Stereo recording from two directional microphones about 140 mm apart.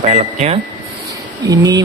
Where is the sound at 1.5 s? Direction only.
25° right (ahead or behind).